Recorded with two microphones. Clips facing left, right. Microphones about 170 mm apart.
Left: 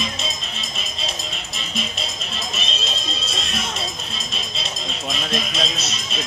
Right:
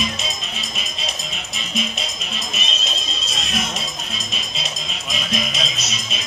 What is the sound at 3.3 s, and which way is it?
Music, 30° left (ahead or behind).